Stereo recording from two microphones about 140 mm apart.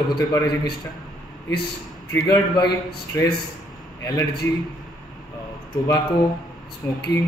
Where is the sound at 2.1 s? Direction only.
25° left (ahead or behind).